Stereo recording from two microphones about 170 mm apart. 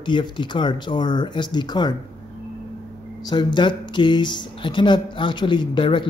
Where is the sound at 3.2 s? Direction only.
25° left (ahead or behind).